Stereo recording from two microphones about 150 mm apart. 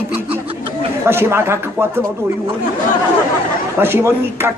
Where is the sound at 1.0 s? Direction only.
15° right (ahead or behind).